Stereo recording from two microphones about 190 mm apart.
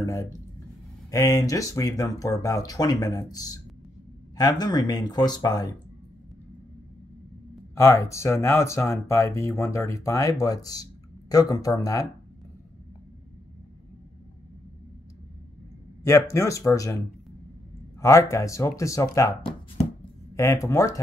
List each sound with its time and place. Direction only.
0.0 s speech: 15° left (ahead or behind)
7.7 s speech: 15° left (ahead or behind)
16.0 s speech: 15° left (ahead or behind)
18.0 s speech: 15° left (ahead or behind)
20.3 s speech: 15° left (ahead or behind)